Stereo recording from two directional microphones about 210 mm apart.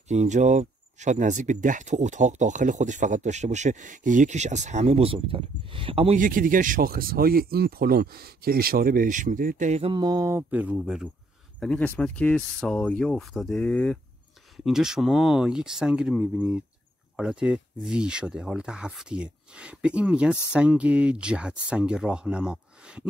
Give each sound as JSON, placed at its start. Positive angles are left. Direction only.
{"t": 0.1, "sound": "speech", "side_deg": -35}
{"t": 6.2, "sound": "speech", "side_deg": -40}
{"t": 11.6, "sound": "speech", "side_deg": 5}